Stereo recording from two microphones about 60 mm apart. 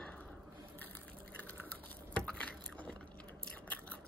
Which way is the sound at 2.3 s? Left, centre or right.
Left.